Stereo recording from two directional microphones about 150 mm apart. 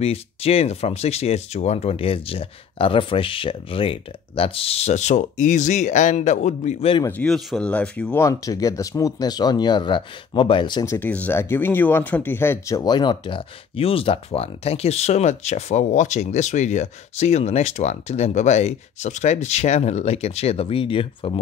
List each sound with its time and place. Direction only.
0.0 s speech: 40° left (ahead or behind)
7.1 s speech: 5° left (ahead or behind); by 10.9 s 30° left (ahead or behind)
10.9 s speech: 10° left (ahead or behind); by 21.3 s 35° left (ahead or behind)